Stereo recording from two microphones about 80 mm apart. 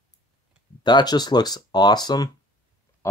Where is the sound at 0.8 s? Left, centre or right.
Left.